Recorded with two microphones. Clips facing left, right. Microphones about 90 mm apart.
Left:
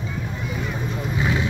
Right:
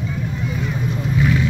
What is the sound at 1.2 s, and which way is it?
Vehicle, 20° left (ahead or behind).